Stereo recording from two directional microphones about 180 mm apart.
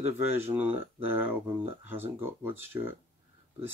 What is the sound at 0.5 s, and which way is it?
Speech, 10° right (ahead or behind).